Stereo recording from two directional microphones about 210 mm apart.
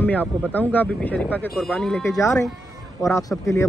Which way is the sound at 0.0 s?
5° left (ahead or behind).